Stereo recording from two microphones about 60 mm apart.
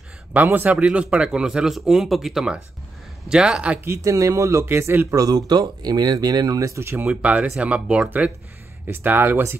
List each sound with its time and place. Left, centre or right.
0.3 s speech: right
0.7 s speech: right; by 2.4 s centre
3.3 s speech: centre
4.0 s speech: right
4.6 s speech: right
5.1 s speech: right
7.1 s speech: right
8.8 s speech: right